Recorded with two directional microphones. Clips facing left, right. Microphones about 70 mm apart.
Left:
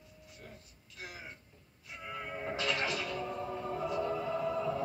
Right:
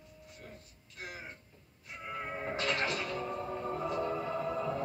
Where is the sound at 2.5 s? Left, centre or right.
Right.